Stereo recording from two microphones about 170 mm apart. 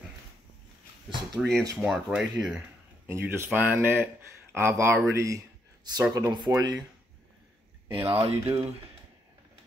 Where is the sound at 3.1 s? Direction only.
15° right (ahead or behind).